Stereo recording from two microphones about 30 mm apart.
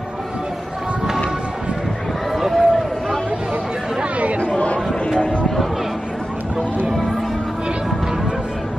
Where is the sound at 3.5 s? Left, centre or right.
Right.